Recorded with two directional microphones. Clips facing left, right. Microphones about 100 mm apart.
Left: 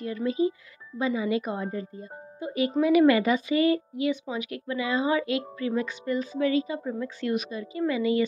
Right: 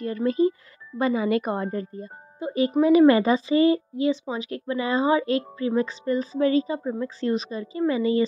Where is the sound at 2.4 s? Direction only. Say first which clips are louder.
Right 4 dB; 30° right (ahead or behind).